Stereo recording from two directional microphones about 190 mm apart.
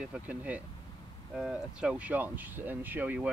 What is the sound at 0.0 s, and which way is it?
Speech, 5° right (ahead or behind).